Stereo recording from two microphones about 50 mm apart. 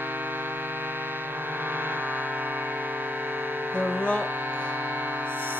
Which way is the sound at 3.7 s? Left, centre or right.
Right.